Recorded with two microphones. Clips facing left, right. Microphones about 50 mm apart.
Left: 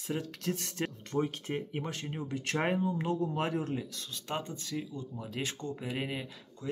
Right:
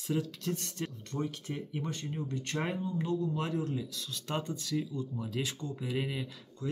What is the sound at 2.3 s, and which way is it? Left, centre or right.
Speech, left.